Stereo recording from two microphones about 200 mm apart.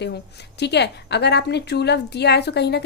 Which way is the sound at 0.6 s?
60° left (ahead or behind).